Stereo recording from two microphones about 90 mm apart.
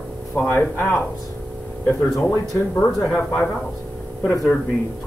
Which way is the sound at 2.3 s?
20° left (ahead or behind).